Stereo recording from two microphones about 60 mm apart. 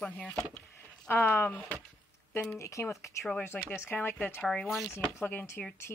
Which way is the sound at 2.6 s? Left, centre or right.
Left.